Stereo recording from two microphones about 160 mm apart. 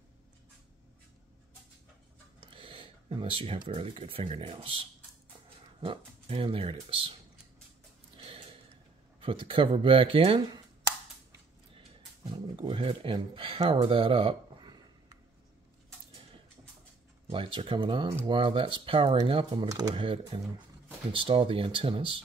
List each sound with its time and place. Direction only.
2.4 s speech: 35° right (ahead or behind)
5.8 s speech: 35° right (ahead or behind)
8.2 s gasp: 35° right (ahead or behind)
9.2 s speech: 35° right (ahead or behind)
12.3 s speech: 30° right (ahead or behind)
17.3 s speech: 30° right (ahead or behind)